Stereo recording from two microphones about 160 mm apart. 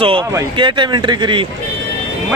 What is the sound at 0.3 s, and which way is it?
Speech, 30° right (ahead or behind).